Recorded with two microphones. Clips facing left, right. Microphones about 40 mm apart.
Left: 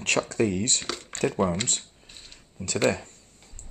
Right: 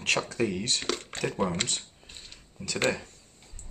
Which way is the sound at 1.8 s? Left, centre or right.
Centre.